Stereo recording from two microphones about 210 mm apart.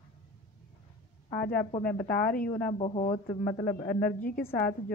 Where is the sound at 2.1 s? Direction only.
45° left (ahead or behind).